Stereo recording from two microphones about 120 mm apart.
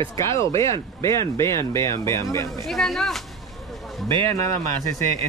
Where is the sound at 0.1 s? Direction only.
25° left (ahead or behind).